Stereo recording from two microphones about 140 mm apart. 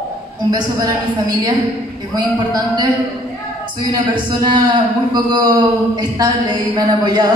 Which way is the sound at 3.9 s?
35° right (ahead or behind).